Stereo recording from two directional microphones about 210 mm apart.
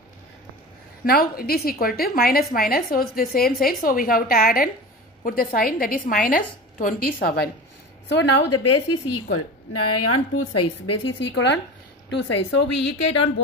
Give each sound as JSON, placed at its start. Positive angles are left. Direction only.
{"t": 1.0, "sound": "a woman's voice", "side_deg": 45}
{"t": 8.1, "sound": "a woman's voice", "side_deg": 75}
{"t": 11.1, "sound": "speech", "side_deg": 55}